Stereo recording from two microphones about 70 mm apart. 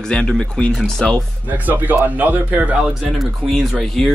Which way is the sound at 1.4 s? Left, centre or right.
Right.